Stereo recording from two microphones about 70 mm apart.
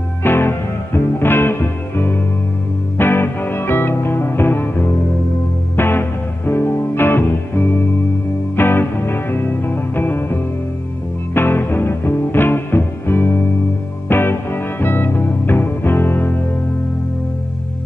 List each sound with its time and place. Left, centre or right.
0.2 s music: left
5.8 s music: left